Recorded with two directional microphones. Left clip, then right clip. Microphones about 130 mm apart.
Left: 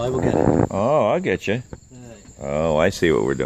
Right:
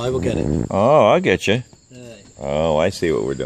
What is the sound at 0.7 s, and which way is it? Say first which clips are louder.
Speech: right 5 dB; 30° right (ahead or behind).